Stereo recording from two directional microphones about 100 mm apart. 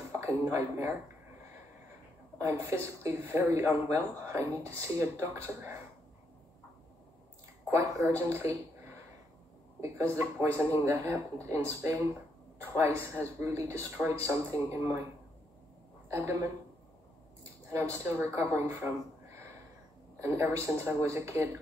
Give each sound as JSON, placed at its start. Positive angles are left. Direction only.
{"t": 0.2, "sound": "speech", "side_deg": -30}
{"t": 2.4, "sound": "speech", "side_deg": -25}
{"t": 7.7, "sound": "speech", "side_deg": -30}
{"t": 16.1, "sound": "a woman's voice", "side_deg": -25}
{"t": 18.0, "sound": "a woman's voice", "side_deg": -25}